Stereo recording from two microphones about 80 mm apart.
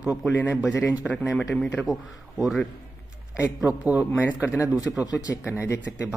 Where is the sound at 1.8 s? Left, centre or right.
Centre.